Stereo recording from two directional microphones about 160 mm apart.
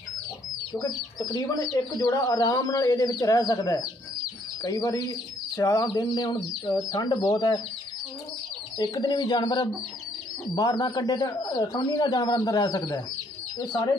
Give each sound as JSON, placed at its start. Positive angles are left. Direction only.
{"t": 0.7, "sound": "speech", "side_deg": 25}
{"t": 8.7, "sound": "speech", "side_deg": 25}